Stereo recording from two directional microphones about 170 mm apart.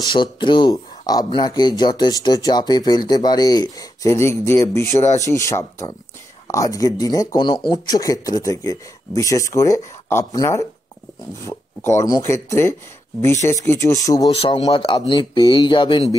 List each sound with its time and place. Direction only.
0.1 s speech: 30° left (ahead or behind)
14.3 s speech: 30° left (ahead or behind)